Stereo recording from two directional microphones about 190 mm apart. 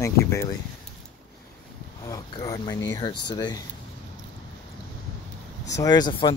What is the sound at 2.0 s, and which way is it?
Speech, 20° left (ahead or behind).